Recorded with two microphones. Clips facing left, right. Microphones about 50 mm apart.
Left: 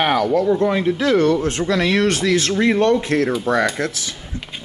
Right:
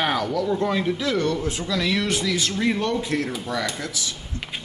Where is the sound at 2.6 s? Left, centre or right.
Left.